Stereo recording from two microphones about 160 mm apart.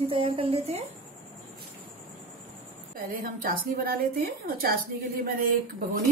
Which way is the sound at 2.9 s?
60° right (ahead or behind).